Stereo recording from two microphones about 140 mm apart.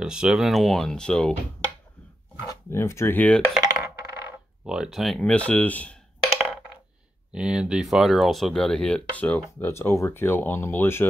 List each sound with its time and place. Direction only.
0.0 s speech: 5° right (ahead or behind)
2.4 s speech: 20° left (ahead or behind)
3.6 s coin: 20° right (ahead or behind)
4.6 s speech: 5° right (ahead or behind)
7.3 s speech: 5° right (ahead or behind); by 11.1 s 15° left (ahead or behind)